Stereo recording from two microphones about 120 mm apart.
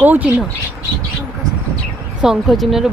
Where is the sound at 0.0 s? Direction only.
15° right (ahead or behind).